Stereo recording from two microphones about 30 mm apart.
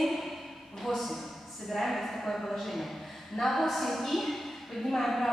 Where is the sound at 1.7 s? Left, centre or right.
Centre.